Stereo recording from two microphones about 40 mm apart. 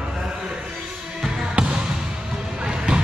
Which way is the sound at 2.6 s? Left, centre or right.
Right.